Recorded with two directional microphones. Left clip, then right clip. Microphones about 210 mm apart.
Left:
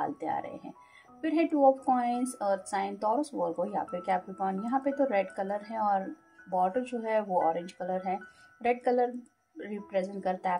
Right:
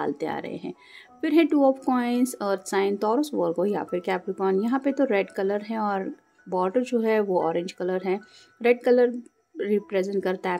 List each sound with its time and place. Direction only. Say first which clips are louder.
0.0 s speech: right 4 dB; 45° right (ahead or behind)